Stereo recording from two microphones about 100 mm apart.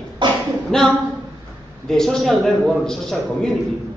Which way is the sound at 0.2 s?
50° right (ahead or behind).